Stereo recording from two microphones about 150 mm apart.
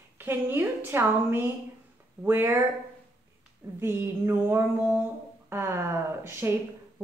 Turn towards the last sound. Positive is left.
turn(degrees=-15)  # may be behind; listen again after turning